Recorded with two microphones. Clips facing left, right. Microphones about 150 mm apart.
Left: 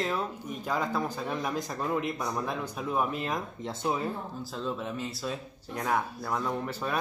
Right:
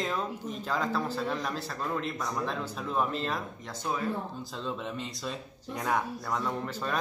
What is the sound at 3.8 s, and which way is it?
Speech, 20° left (ahead or behind).